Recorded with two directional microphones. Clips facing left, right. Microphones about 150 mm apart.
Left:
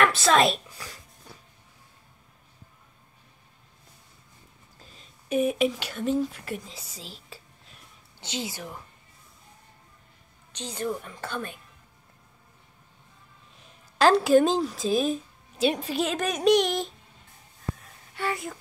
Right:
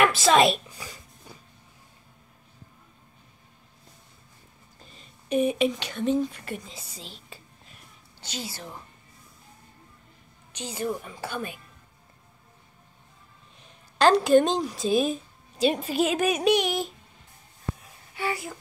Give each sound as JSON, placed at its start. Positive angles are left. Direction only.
{"t": 0.0, "sound": "a sound", "side_deg": -5}
{"t": 4.7, "sound": "speech", "side_deg": 0}
{"t": 8.2, "sound": "a woman's voice", "side_deg": 20}
{"t": 10.5, "sound": "a woman's voice", "side_deg": -5}
{"t": 13.7, "sound": "speech", "side_deg": 0}
{"t": 17.7, "sound": "a sound", "side_deg": 0}